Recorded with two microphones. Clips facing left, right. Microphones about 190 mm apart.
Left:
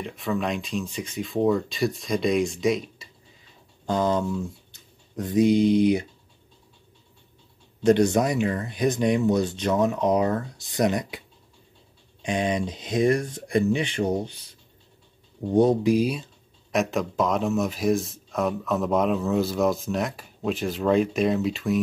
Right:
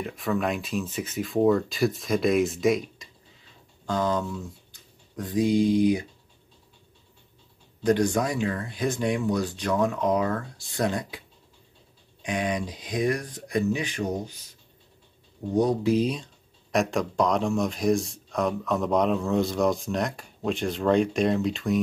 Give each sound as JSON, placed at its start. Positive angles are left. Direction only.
{"t": 0.0, "sound": "speech", "side_deg": 0}
{"t": 3.8, "sound": "speech", "side_deg": 20}
{"t": 7.8, "sound": "speech", "side_deg": 25}
{"t": 12.2, "sound": "speech", "side_deg": 25}
{"t": 15.5, "sound": "speech", "side_deg": 25}
{"t": 15.8, "sound": "speech", "side_deg": 10}